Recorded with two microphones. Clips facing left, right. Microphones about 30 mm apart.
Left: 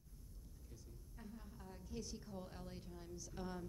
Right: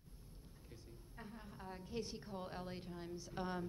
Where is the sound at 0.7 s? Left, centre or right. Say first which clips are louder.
Right 3 dB; right.